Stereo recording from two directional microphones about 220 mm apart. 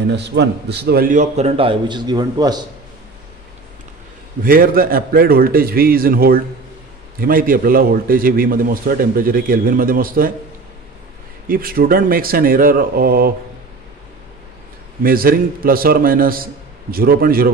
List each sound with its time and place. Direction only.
0.0 s a man's voice: 50° right (ahead or behind); by 2.6 s 20° right (ahead or behind)
4.4 s a man's voice: 40° right (ahead or behind)
11.4 s a man's voice: 40° right (ahead or behind)
15.0 s a man's voice: 40° right (ahead or behind)